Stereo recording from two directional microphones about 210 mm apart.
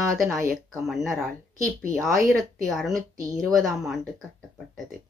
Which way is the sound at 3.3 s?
Centre (ahead or behind).